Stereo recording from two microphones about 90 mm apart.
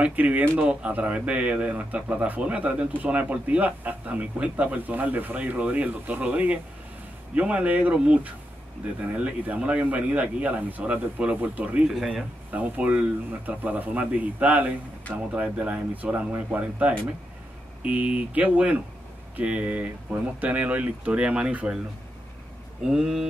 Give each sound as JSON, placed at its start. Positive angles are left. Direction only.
{"t": 0.0, "sound": "speech", "side_deg": -15}
{"t": 22.8, "sound": "speech", "side_deg": -5}